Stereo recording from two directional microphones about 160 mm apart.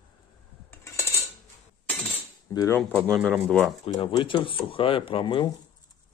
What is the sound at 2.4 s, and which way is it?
Speech, 20° left (ahead or behind).